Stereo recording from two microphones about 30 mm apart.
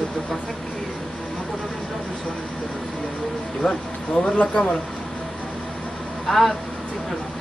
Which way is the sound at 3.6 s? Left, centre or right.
Left.